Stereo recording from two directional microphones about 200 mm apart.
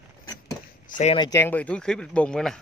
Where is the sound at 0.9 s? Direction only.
35° left (ahead or behind).